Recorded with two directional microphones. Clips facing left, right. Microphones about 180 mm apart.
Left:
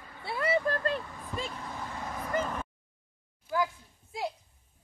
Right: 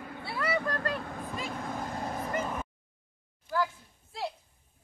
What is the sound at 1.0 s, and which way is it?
Vehicle, 55° right (ahead or behind).